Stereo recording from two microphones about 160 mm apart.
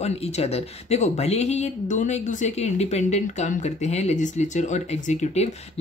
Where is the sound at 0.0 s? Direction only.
40° left (ahead or behind).